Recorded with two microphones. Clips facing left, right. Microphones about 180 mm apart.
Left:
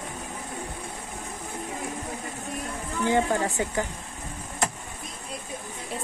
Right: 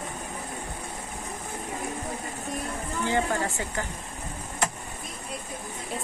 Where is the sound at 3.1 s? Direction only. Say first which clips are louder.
Left 3 dB; 15° left (ahead or behind).